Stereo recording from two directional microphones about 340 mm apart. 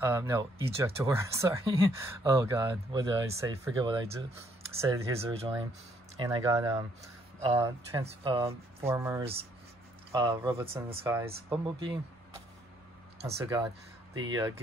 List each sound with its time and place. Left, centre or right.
0.0 s speech: centre
13.2 s speech: centre